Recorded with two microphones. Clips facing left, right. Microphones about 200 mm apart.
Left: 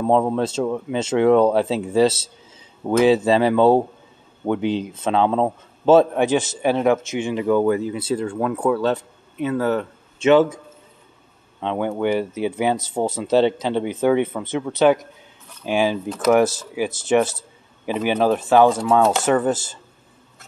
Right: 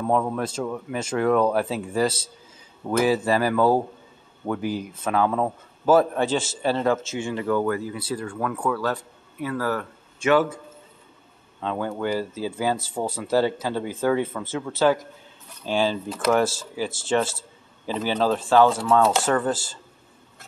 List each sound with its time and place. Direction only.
0.0 s a man's voice: 25° left (ahead or behind)
11.6 s a man's voice: 20° left (ahead or behind)